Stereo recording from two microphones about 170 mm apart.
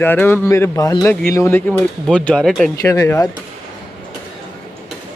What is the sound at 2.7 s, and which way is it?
Speech, 20° left (ahead or behind).